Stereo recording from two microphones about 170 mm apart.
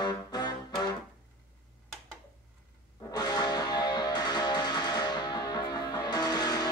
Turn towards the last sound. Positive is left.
turn(degrees=25)  # may be behind; listen again after turning